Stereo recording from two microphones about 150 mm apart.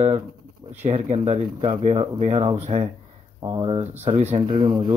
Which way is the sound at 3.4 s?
30° right (ahead or behind).